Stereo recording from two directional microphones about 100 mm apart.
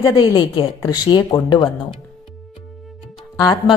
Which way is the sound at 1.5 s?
50° left (ahead or behind).